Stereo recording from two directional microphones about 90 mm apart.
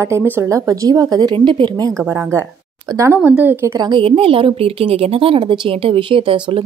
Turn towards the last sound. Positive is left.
turn(degrees=-70)  # may be behind; listen again after turning